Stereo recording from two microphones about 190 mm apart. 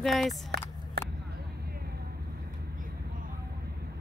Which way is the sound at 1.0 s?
55° right (ahead or behind).